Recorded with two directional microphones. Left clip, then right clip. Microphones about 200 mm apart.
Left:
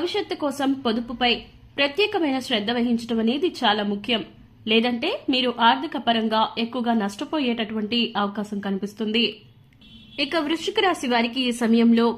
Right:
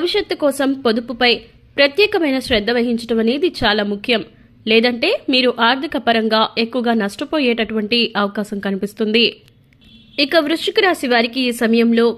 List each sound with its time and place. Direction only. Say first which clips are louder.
0.0 s a woman's voice: right 8 dB; 20° right (ahead or behind)